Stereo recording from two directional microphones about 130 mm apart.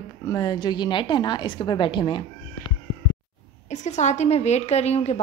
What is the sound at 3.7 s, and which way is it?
A woman's voice, 65° left (ahead or behind).